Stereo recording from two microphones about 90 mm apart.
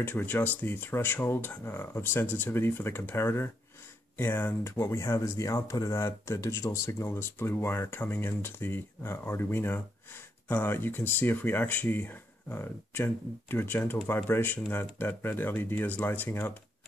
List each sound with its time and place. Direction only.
0.0 s speech: 20° left (ahead or behind)
4.7 s speech: 35° left (ahead or behind)